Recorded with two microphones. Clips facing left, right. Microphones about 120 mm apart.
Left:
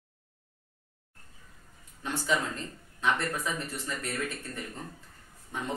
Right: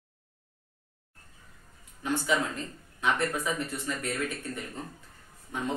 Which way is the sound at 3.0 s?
15° right (ahead or behind).